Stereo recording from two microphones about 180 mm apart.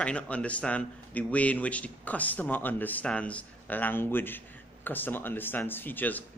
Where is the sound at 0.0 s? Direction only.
5° left (ahead or behind).